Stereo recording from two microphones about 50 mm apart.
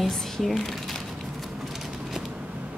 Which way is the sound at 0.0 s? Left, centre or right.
Centre.